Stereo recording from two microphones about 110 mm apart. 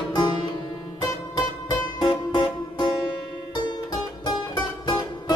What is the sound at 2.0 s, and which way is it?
Music, 45° left (ahead or behind).